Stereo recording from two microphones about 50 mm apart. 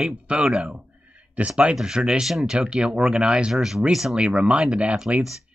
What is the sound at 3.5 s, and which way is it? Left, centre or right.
Speech, centre.